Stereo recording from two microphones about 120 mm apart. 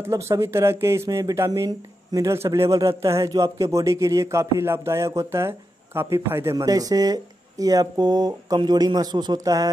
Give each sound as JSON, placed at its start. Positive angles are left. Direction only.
{"t": 0.0, "sound": "a man's voice", "side_deg": -25}